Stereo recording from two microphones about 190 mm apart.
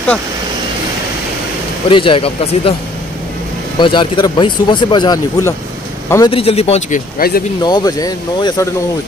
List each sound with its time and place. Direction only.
1.9 s speech: 25° left (ahead or behind)
3.8 s a man's voice: 25° left (ahead or behind)
6.3 s speech: 30° left (ahead or behind)
7.2 s speech: 50° left (ahead or behind)
7.6 s speech: 20° left (ahead or behind)